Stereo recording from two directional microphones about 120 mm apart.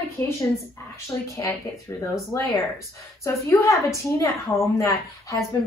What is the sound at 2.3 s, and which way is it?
A woman's voice, 30° left (ahead or behind).